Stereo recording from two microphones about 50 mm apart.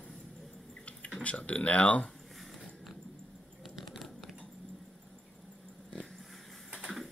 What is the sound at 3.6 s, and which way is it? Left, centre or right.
Typing, centre.